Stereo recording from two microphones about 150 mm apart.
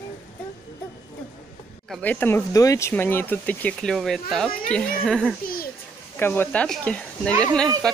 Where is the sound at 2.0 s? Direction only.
10° left (ahead or behind).